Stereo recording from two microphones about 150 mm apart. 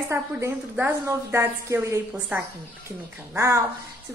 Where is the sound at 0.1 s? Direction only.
15° right (ahead or behind).